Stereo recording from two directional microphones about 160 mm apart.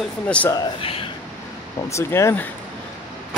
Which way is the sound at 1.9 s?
15° left (ahead or behind).